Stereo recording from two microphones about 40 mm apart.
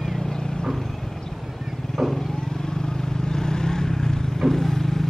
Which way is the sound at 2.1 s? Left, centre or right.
Centre.